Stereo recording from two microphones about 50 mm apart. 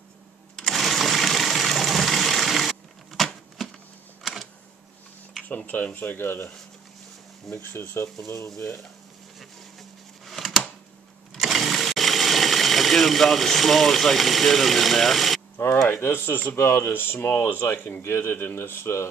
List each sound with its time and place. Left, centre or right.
0.6 s sewing machine: centre
4.2 s typing: centre
5.7 s speech: left
7.7 s speech: left
9.4 s a sound: centre
11.3 s sewing machine: centre
15.5 s speech: left